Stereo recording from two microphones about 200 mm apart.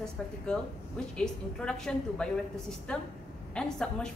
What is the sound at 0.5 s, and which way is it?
A woman's voice, 5° left (ahead or behind).